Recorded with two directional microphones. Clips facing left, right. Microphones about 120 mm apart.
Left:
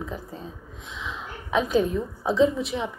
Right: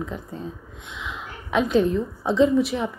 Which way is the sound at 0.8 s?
30° left (ahead or behind).